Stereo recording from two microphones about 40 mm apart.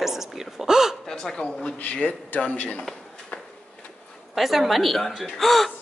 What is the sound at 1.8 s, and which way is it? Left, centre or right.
A man's voice, left.